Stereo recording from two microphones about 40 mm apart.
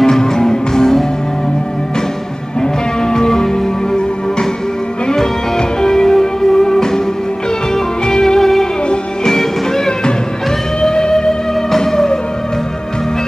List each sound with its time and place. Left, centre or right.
0.0 s music: centre
2.6 s music: centre
5.0 s music: centre